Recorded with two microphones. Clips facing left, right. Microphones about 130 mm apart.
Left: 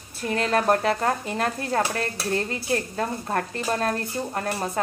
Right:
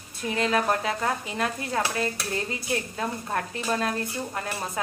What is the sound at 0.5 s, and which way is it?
A woman's voice, 50° left (ahead or behind).